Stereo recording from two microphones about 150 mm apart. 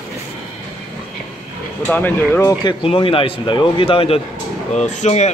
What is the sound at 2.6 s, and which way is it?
Speech, 35° left (ahead or behind).